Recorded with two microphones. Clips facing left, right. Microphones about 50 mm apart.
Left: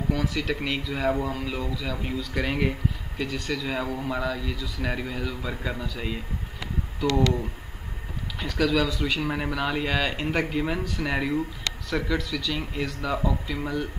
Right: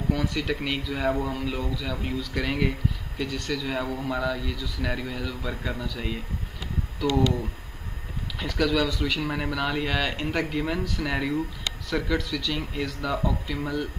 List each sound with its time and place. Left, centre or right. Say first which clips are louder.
0.1 s speech: even; centre
8.4 s speech: left 1 dB; centre